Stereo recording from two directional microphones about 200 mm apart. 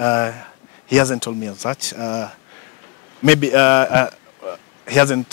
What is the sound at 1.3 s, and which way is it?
A man's voice, 20° left (ahead or behind).